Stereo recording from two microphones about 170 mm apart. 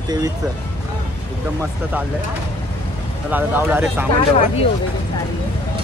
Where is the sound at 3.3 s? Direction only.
10° right (ahead or behind).